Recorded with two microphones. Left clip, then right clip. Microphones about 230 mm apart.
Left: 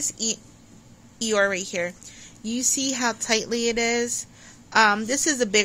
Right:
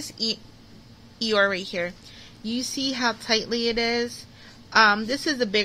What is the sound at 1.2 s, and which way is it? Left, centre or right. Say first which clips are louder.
A woman's voice: even; centre.